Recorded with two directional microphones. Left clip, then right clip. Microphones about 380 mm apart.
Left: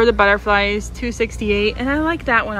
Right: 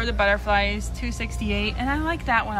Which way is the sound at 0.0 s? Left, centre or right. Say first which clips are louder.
Left 8 dB; centre.